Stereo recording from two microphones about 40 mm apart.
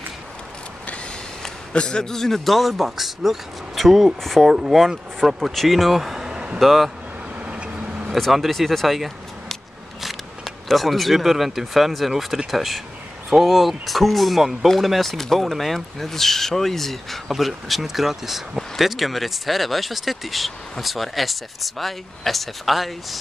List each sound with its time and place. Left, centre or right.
1.4 s a man's voice: left; by 4.5 s centre
4.5 s speech: centre
6.6 s speech: centre
7.4 s vehicle: right
8.3 s speech: centre